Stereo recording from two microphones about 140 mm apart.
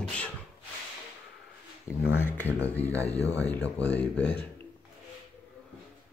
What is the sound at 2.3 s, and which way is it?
Speech, 10° left (ahead or behind).